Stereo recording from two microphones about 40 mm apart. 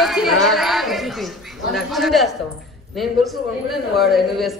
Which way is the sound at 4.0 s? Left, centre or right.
Centre.